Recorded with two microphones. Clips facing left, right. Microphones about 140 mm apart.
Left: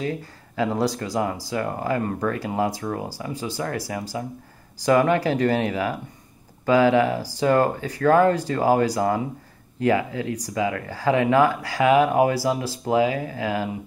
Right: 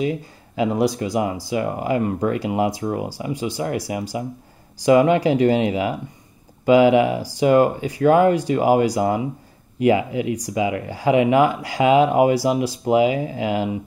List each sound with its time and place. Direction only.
0.0 s speech: 15° right (ahead or behind)